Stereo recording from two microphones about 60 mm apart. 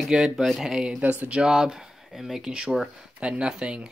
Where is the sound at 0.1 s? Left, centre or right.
Centre.